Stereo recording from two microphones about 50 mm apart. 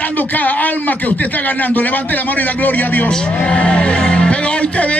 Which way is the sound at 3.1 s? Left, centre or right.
Left.